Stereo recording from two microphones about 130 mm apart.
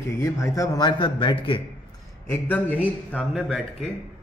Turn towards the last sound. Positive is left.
turn(degrees=0)  # may be behind; listen again after turning